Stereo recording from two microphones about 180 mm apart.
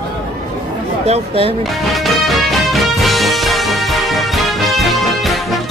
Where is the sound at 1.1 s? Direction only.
35° right (ahead or behind).